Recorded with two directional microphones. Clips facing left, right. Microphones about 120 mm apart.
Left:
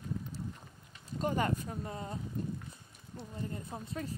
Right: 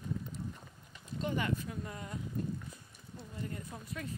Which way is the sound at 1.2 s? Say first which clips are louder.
Left 3 dB; 40° left (ahead or behind).